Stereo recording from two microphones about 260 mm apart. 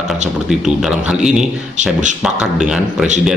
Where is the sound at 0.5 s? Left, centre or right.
Centre.